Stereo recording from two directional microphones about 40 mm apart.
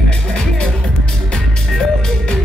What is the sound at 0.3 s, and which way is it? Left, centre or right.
Music, left.